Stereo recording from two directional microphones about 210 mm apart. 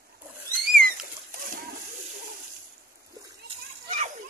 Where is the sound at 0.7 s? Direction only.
45° right (ahead or behind).